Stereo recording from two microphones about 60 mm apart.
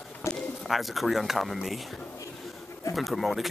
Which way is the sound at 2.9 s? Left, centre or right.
Centre.